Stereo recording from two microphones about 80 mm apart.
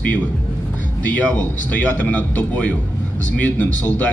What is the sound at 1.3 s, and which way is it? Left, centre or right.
Speech, centre.